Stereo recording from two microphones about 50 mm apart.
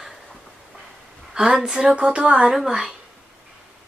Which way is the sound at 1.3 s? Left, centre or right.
Centre.